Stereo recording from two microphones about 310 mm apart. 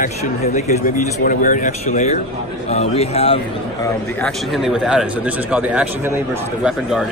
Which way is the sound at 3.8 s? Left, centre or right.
Centre.